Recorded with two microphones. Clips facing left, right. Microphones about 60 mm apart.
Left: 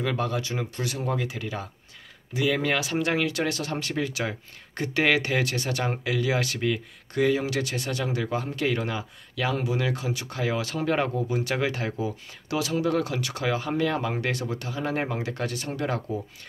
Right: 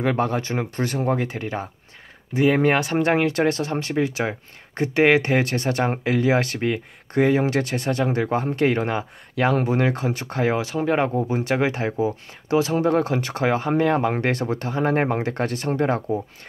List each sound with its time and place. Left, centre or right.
0.0 s speech: right